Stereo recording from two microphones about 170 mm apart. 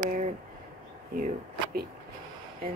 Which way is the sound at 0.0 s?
50° right (ahead or behind).